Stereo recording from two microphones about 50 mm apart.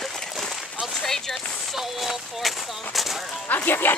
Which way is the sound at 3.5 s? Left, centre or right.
Left.